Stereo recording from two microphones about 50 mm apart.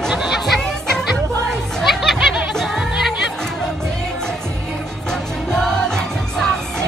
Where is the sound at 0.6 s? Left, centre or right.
Centre.